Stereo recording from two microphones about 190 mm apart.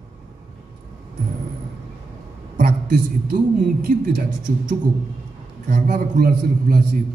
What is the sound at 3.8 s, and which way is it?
Speech, 50° right (ahead or behind).